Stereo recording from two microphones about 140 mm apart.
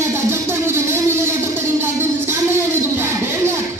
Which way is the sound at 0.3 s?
15° right (ahead or behind).